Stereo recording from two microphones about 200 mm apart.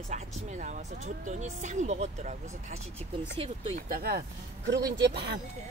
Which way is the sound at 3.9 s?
50° right (ahead or behind).